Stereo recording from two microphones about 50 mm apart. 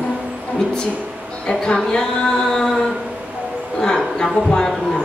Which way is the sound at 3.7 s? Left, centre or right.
Centre.